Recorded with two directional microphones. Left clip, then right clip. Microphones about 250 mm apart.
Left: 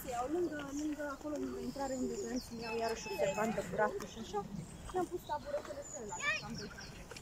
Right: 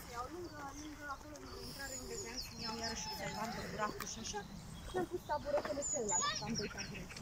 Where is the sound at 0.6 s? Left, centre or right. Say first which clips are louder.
Left 8 dB; left.